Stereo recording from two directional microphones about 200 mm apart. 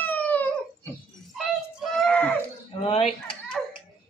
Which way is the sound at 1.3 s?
Centre (ahead or behind).